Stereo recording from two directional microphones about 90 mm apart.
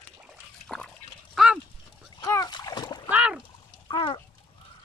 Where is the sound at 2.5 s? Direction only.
50° left (ahead or behind).